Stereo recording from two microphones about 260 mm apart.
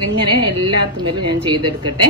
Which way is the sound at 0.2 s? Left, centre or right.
Centre.